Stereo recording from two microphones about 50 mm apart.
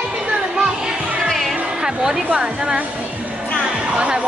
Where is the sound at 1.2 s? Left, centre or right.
Centre.